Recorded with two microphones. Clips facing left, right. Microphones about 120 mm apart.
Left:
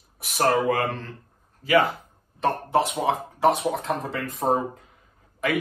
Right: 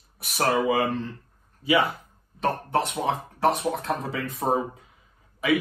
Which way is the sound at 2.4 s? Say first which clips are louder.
Left 2 dB; centre (ahead or behind).